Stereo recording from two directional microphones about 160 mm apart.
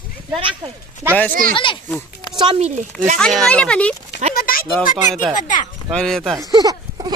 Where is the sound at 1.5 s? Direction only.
30° left (ahead or behind).